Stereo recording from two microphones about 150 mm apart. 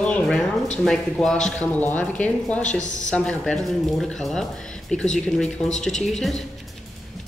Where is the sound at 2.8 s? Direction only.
55° left (ahead or behind).